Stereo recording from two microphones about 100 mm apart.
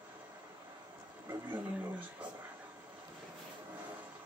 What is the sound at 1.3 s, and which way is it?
Speech, 20° right (ahead or behind).